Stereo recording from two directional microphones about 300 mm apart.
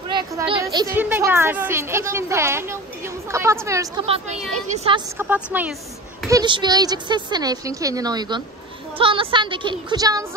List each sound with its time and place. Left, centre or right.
0.1 s a woman's voice: centre